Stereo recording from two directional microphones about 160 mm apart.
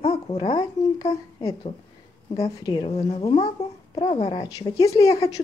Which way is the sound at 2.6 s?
30° left (ahead or behind).